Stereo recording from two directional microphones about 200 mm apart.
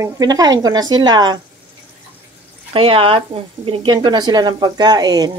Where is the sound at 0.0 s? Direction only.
20° right (ahead or behind).